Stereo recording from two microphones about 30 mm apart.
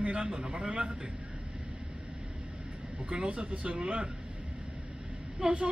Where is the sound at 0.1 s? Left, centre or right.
Right.